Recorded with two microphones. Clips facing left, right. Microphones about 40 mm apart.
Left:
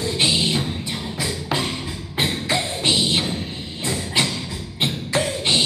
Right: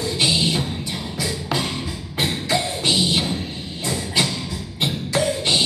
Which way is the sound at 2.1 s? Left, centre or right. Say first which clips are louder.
Even; left.